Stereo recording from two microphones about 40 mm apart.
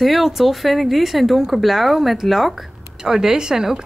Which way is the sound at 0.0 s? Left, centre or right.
Centre.